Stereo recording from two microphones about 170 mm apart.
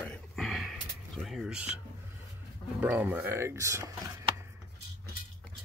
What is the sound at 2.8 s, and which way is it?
Speech, 10° right (ahead or behind).